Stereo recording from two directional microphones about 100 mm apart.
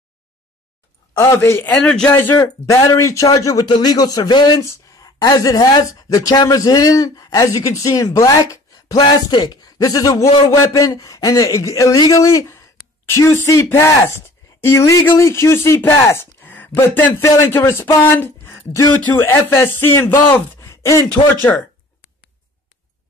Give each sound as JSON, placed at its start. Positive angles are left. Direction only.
{"t": 1.1, "sound": "speech", "side_deg": 30}
{"t": 1.8, "sound": "speech", "side_deg": 10}
{"t": 2.1, "sound": "speech", "side_deg": 20}
{"t": 2.4, "sound": "speech", "side_deg": 35}